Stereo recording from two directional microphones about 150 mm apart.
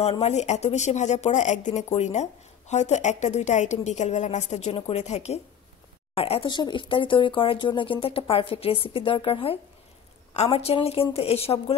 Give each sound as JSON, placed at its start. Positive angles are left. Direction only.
{"t": 0.0, "sound": "a woman's voice", "side_deg": 45}